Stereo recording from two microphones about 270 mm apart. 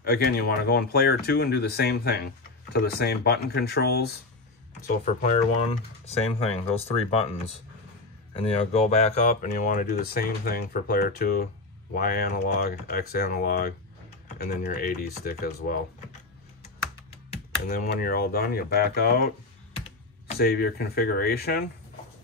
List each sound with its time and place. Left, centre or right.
0.0 s speech: left
5.0 s speech: left
17.3 s speech: left
20.3 s speech: left